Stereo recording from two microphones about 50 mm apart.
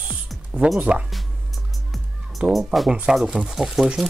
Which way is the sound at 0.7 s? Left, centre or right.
Right.